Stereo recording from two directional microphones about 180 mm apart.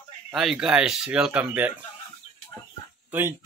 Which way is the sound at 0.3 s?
Centre (ahead or behind).